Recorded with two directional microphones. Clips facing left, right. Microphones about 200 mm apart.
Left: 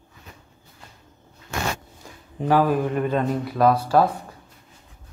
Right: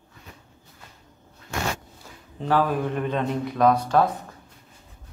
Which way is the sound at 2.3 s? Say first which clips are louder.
Left 3 dB; 10° left (ahead or behind).